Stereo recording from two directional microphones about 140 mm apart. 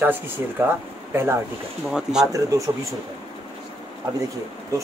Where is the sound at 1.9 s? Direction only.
5° right (ahead or behind).